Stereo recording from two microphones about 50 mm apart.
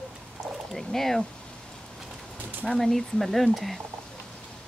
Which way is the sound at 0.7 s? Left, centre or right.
Centre.